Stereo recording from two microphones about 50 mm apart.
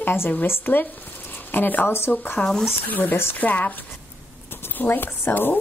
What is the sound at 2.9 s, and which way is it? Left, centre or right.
Speech, left.